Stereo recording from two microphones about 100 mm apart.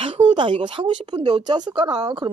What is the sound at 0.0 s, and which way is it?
Speech, 60° right (ahead or behind).